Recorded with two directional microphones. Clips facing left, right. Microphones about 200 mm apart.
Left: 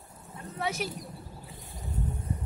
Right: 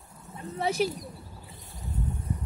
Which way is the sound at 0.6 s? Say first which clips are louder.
Right 6 dB; 30° right (ahead or behind).